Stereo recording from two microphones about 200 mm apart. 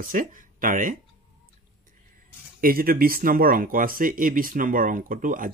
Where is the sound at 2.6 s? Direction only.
45° right (ahead or behind).